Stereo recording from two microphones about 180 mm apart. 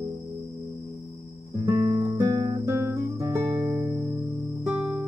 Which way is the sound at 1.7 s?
25° right (ahead or behind).